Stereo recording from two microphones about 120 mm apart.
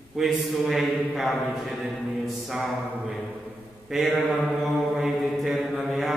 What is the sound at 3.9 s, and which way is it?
Speech, centre (ahead or behind).